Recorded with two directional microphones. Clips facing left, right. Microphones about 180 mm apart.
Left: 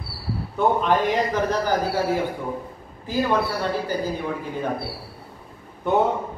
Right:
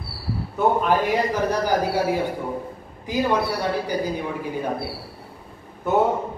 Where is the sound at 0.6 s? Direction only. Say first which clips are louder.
Even; 5° right (ahead or behind).